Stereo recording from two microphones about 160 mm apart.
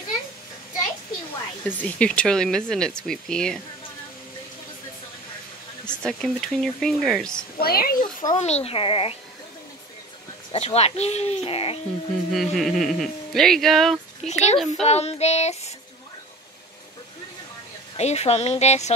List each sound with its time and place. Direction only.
1.7 s speech: 10° left (ahead or behind)
5.9 s speech: 5° left (ahead or behind)
7.5 s a child's voice: 70° left (ahead or behind)
8.4 s speech: 40° left (ahead or behind)
10.5 s speech: 40° left (ahead or behind)
12.3 s speech: centre (ahead or behind)
14.2 s child singing: 45° left (ahead or behind)
17.9 s child singing: 45° left (ahead or behind)